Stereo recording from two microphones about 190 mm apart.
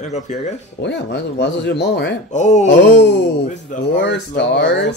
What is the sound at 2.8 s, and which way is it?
Speech, 65° left (ahead or behind).